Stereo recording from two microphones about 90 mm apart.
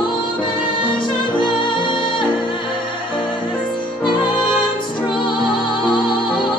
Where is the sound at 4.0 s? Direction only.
55° left (ahead or behind).